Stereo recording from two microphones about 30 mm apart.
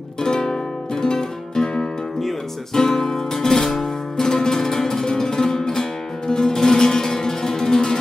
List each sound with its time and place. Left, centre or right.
0.2 s music: centre
2.7 s music: centre